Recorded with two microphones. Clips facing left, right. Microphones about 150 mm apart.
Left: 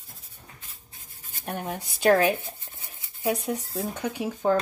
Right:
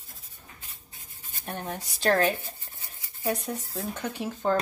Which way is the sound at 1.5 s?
10° left (ahead or behind).